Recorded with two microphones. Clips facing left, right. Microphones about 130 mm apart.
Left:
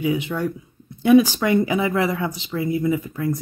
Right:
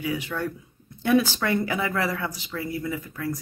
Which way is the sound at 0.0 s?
20° left (ahead or behind).